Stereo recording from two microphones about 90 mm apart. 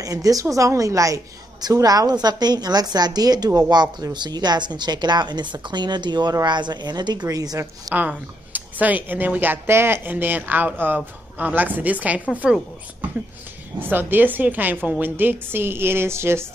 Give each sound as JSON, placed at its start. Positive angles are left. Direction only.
{"t": 0.0, "sound": "a woman's voice", "side_deg": -40}
{"t": 7.9, "sound": "a woman's voice", "side_deg": -20}
{"t": 13.7, "sound": "speech", "side_deg": -20}